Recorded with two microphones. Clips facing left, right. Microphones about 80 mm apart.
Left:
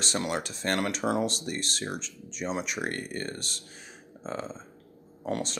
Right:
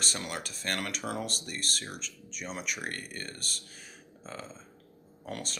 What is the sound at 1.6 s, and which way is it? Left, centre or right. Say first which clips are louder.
Speech: left 3 dB; right.